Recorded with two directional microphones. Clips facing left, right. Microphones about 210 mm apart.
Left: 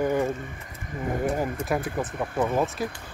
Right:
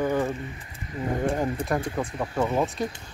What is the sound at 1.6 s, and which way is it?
Speech, 5° left (ahead or behind).